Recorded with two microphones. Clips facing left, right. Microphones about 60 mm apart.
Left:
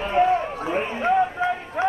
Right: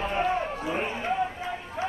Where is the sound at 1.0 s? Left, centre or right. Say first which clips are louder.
Left 8 dB; left.